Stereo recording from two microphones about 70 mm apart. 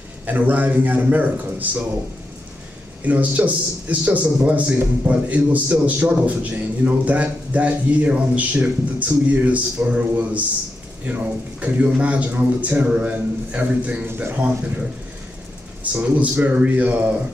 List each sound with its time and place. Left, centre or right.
0.3 s a man's voice: right
3.0 s a man's voice: right
15.8 s a man's voice: right